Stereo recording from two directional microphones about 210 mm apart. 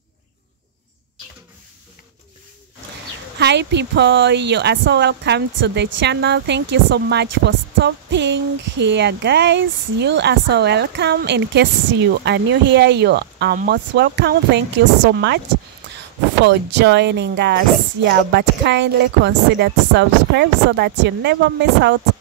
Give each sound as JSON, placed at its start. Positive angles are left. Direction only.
{"t": 3.3, "sound": "speech", "side_deg": -55}
{"t": 16.4, "sound": "speech", "side_deg": -55}